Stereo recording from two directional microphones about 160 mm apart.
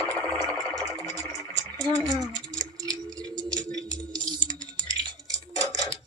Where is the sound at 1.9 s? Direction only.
35° right (ahead or behind).